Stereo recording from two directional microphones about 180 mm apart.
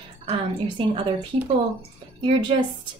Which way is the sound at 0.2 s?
30° right (ahead or behind).